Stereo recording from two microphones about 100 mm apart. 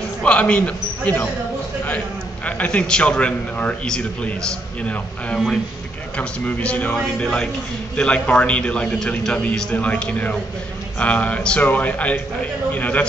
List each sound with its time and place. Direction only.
0.2 s a man's voice: 10° left (ahead or behind)
2.4 s a man's voice: 15° left (ahead or behind)